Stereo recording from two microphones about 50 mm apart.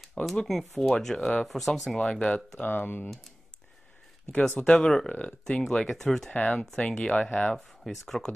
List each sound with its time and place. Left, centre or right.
0.0 s a sound: centre
0.4 s speech: centre
2.0 s speech: centre
2.6 s speech: left
4.6 s speech: centre
6.3 s speech: left
6.8 s speech: centre
7.5 s speech: centre